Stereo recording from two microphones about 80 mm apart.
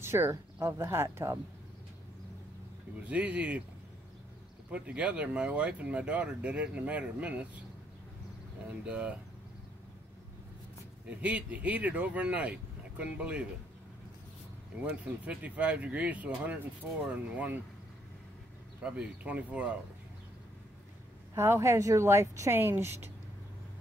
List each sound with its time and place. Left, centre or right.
0.0 s speech: right
3.1 s speech: centre
4.6 s speech: centre
8.8 s speech: centre
11.1 s speech: centre
14.9 s speech: centre
18.8 s speech: centre
21.4 s a woman's voice: right